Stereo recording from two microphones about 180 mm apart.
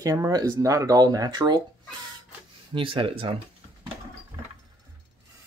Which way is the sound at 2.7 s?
30° right (ahead or behind).